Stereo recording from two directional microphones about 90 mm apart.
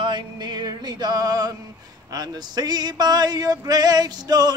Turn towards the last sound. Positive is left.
turn(degrees=-50)  # may be behind; listen again after turning